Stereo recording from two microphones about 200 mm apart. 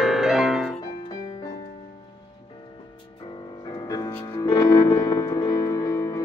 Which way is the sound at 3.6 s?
20° left (ahead or behind).